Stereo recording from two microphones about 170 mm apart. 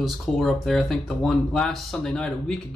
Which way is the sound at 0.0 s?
Centre (ahead or behind).